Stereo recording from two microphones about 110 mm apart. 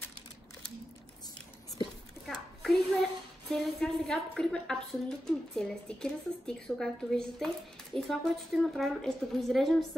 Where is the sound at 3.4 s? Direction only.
5° left (ahead or behind).